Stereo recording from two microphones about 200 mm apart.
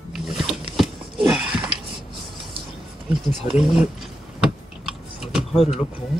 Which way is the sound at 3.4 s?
25° right (ahead or behind).